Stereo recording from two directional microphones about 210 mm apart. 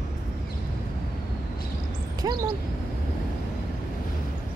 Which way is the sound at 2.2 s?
20° right (ahead or behind).